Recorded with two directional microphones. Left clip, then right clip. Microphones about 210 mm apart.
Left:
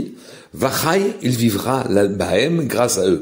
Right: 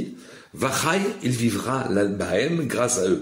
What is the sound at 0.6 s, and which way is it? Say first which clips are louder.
Speech: left 5 dB; 25° left (ahead or behind).